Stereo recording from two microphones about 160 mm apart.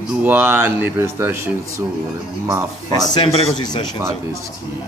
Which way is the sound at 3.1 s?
30° left (ahead or behind).